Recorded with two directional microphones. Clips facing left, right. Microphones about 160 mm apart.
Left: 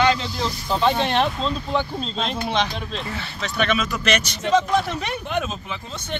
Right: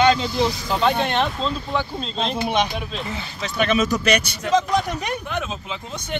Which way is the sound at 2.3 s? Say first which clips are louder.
Right 3 dB; 15° right (ahead or behind).